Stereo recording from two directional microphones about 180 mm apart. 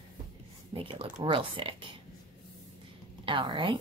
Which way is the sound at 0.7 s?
30° right (ahead or behind).